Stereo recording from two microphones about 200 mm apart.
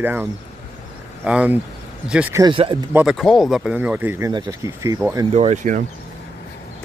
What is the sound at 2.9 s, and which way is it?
Speech, 5° right (ahead or behind).